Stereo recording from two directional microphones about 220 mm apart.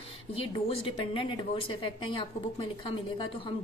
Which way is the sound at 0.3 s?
25° left (ahead or behind).